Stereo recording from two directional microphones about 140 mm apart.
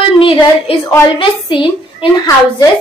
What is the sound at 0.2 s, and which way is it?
A woman's voice, 40° left (ahead or behind).